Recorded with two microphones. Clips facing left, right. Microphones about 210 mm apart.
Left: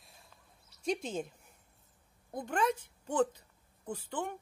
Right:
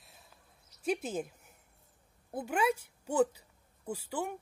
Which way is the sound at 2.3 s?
10° right (ahead or behind).